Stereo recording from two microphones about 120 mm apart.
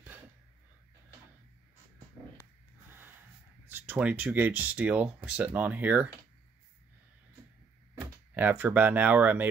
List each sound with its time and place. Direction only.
2.9 s snort: 15° right (ahead or behind)
3.6 s speech: 15° right (ahead or behind)
7.9 s speech: 15° right (ahead or behind)